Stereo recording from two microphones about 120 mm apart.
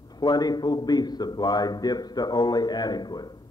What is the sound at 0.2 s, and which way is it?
A man's voice, 35° left (ahead or behind).